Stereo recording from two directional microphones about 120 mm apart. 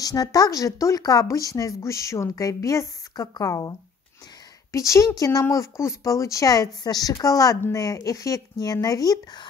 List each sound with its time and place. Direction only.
0.0 s speech: 30° left (ahead or behind)
4.7 s speech: 25° left (ahead or behind)